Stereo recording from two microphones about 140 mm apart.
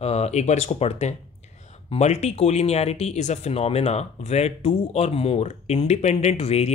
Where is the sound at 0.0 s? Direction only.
50° left (ahead or behind).